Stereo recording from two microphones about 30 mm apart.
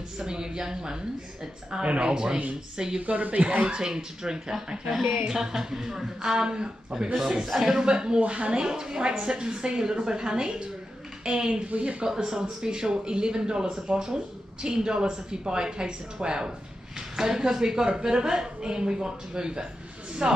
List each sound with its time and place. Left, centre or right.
0.2 s speech: right
1.8 s a woman's voice: right
3.0 s a woman's voice: right
3.6 s speech: right
7.4 s speech: centre
7.7 s speech: right
8.3 s a woman's voice: right
8.5 s a woman's voice: right
11.6 s a woman's voice: right
12.2 s speech: right